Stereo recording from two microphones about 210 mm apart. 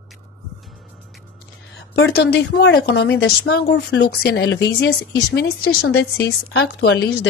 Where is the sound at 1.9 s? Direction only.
55° left (ahead or behind).